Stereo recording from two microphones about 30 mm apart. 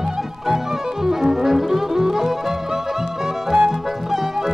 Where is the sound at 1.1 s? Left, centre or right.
Centre.